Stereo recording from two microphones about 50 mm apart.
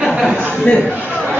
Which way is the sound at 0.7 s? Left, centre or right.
Left.